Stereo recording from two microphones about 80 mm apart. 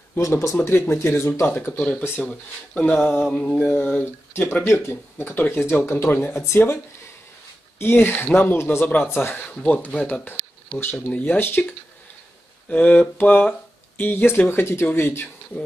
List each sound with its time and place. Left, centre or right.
0.2 s speech: left
1.7 s speech: centre
4.0 s speech: left
7.8 s speech: left
10.2 s speech: left
12.6 s speech: centre